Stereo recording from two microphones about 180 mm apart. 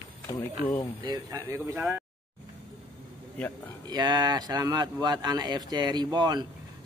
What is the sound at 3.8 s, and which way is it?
A man's voice, 25° right (ahead or behind).